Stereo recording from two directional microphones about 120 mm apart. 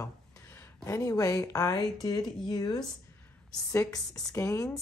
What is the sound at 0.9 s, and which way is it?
Speech, 25° left (ahead or behind).